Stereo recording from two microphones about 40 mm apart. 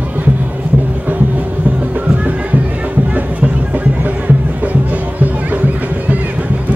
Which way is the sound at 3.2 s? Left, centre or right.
Right.